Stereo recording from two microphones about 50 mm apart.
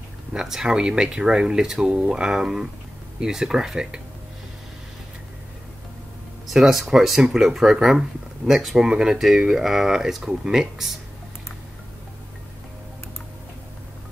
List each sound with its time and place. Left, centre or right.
0.3 s speech: centre
6.4 s speech: centre